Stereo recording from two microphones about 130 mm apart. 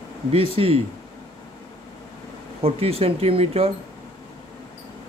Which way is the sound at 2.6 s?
50° right (ahead or behind).